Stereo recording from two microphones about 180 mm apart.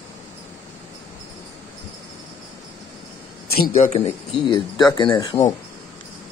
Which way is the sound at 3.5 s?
55° left (ahead or behind).